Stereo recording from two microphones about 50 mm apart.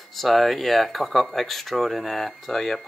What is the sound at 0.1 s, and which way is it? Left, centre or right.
Speech, centre.